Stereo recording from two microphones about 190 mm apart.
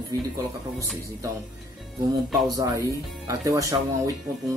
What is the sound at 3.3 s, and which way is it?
Speech, 15° right (ahead or behind).